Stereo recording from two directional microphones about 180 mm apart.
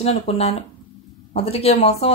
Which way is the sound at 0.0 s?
35° left (ahead or behind).